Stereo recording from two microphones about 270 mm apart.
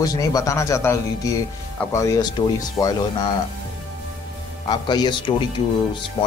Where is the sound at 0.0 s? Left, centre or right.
Centre.